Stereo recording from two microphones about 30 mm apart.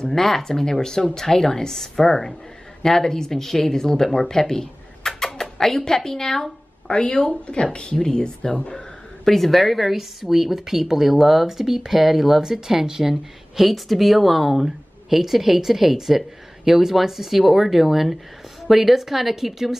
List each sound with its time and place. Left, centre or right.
0.0 s speech: centre
3.9 s a sound: centre
5.9 s speech: centre
6.9 s speech: left
8.4 s speech: left
9.2 s speech: centre
13.6 s speech: centre